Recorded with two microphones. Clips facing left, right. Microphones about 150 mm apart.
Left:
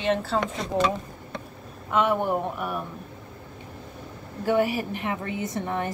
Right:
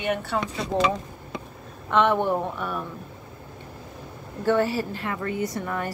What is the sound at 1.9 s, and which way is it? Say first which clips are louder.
Speech: right 2 dB; 5° left (ahead or behind).